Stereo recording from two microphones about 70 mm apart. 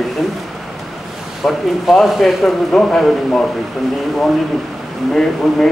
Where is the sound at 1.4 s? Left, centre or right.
Centre.